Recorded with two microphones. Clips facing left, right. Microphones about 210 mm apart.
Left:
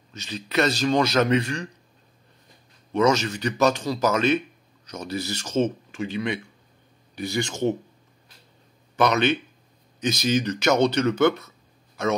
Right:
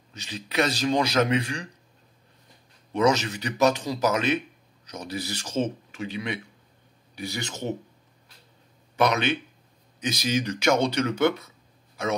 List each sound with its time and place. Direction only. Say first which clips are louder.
0.1 s speech: left 4 dB; 15° right (ahead or behind)
2.9 s a man's voice: left 2 dB; 15° right (ahead or behind)
9.0 s speech: left 2 dB; 10° right (ahead or behind)